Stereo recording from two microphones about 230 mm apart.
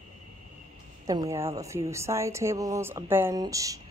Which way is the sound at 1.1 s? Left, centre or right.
Centre.